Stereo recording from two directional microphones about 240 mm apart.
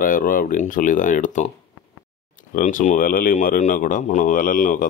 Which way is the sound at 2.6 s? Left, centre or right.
Left.